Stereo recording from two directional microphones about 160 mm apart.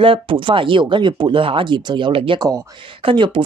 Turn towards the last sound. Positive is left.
turn(degrees=-30)  # may be behind; listen again after turning